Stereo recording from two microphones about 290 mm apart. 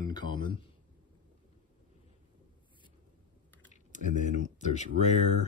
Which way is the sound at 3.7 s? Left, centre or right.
Left.